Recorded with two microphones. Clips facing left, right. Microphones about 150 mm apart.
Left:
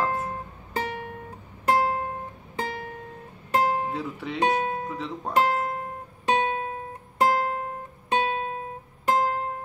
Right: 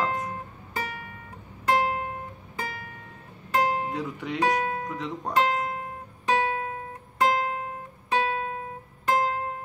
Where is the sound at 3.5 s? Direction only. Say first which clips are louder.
Left 1 dB; 25° left (ahead or behind).